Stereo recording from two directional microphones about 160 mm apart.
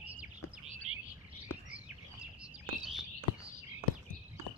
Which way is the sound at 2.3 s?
5° right (ahead or behind).